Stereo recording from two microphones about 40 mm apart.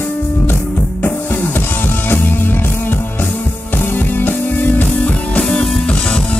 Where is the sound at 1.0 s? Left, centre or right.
Left.